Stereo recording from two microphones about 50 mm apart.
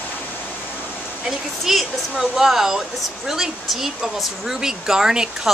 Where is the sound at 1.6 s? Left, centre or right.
Centre.